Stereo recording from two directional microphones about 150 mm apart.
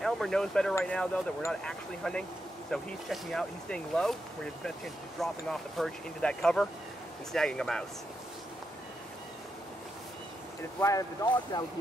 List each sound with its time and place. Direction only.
0.0 s speech: 5° left (ahead or behind)
10.8 s speech: 20° left (ahead or behind)